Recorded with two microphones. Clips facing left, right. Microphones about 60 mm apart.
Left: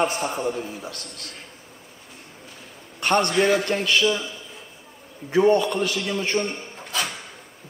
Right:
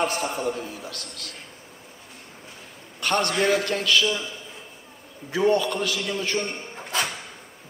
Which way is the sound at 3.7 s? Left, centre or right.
Left.